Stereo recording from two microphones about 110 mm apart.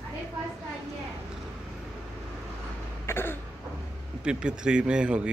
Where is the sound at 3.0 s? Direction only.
20° left (ahead or behind).